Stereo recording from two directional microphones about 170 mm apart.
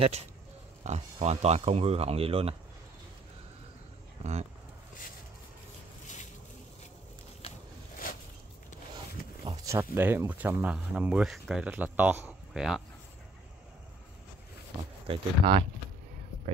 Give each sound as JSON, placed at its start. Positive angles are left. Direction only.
{"t": 0.0, "sound": "speech", "side_deg": -40}
{"t": 4.2, "sound": "speech", "side_deg": -40}
{"t": 7.4, "sound": "a sound", "side_deg": 35}
{"t": 8.9, "sound": "a sound", "side_deg": -30}
{"t": 9.7, "sound": "speech", "side_deg": -10}
{"t": 15.0, "sound": "speech", "side_deg": -30}